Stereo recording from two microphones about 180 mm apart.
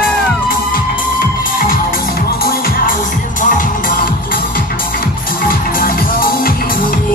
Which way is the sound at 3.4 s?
50° left (ahead or behind).